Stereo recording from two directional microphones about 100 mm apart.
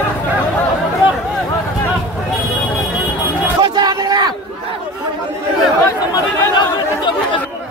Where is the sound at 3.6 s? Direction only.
45° right (ahead or behind).